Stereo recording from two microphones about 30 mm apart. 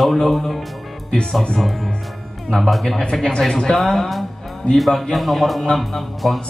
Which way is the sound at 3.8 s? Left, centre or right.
Centre.